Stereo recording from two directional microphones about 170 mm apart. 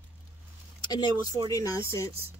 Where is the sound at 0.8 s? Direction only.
25° left (ahead or behind).